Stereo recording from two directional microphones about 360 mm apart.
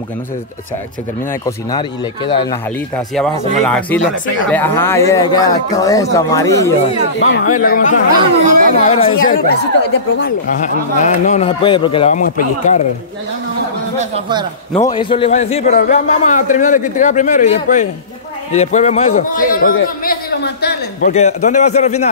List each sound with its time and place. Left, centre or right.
1.4 s speech: centre
3.6 s speech: centre
7.2 s a man's voice: left
8.5 s speech: right
8.7 s a man's voice: centre
14.7 s a man's voice: centre